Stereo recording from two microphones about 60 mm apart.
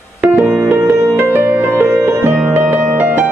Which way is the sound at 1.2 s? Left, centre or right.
Right.